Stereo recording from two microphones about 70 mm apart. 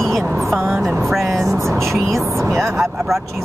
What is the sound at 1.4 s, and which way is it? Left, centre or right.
Speech, right.